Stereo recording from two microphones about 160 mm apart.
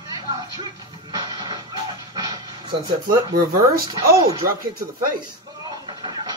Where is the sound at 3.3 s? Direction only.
60° right (ahead or behind).